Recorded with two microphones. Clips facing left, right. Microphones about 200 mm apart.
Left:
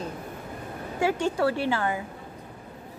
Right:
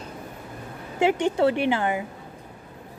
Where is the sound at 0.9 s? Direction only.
20° right (ahead or behind).